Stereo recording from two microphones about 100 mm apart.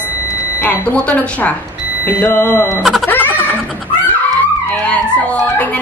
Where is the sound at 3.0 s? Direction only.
20° left (ahead or behind).